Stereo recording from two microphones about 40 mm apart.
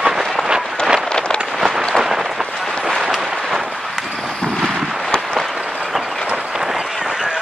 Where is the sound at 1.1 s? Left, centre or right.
Left.